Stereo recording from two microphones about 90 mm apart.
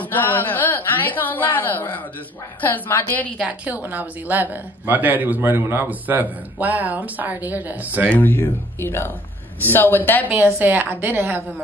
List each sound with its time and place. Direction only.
0.0 s a woman's voice: 20° left (ahead or behind)
3.3 s speech: 15° right (ahead or behind)
8.1 s speech: 20° left (ahead or behind)
10.2 s speech: 20° right (ahead or behind)